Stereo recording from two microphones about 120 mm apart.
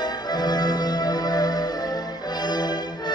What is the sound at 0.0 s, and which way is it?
Music, 35° left (ahead or behind).